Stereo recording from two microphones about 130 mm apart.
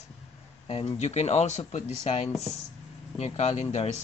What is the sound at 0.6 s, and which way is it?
Speech, 40° left (ahead or behind).